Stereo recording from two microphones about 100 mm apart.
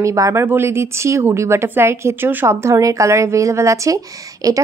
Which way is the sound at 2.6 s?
35° right (ahead or behind).